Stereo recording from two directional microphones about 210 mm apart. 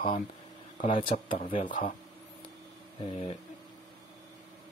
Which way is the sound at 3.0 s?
25° left (ahead or behind).